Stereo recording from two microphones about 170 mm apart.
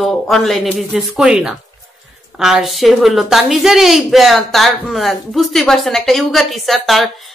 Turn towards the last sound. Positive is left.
turn(degrees=0)  # may be behind; listen again after turning